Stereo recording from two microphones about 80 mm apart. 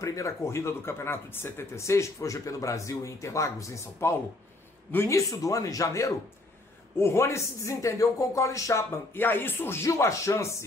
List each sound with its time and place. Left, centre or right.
0.0 s a man's voice: left
7.0 s speech: left
9.8 s speech: left